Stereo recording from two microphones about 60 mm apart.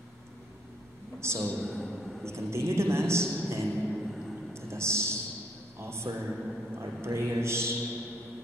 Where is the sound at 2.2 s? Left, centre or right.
Right.